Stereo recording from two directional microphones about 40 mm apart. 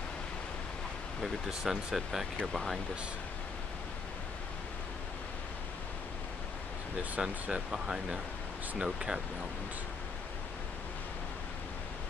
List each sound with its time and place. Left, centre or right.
1.5 s speech: centre
2.5 s speech: centre
7.2 s speech: right
8.8 s speech: centre